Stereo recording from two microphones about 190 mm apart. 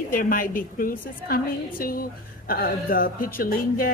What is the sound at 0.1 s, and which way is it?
A woman's voice, 45° left (ahead or behind).